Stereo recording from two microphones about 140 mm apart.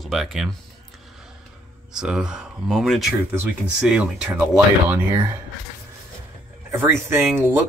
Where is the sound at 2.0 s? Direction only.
5° right (ahead or behind).